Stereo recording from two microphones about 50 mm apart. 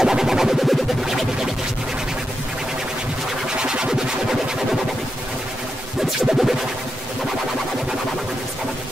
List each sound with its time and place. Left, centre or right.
0.0 s music: centre
3.4 s music: centre
6.2 s music: centre